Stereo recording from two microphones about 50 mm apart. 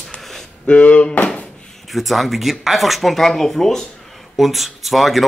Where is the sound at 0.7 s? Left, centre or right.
Left.